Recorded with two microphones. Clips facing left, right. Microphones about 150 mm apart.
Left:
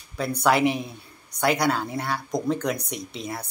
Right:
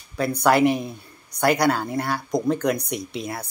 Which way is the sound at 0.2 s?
Centre (ahead or behind).